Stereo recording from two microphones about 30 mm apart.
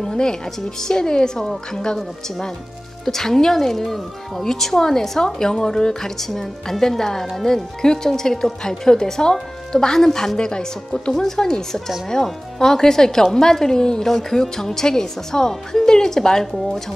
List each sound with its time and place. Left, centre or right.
0.0 s speech: left
3.1 s a woman's voice: centre
14.0 s a woman's voice: centre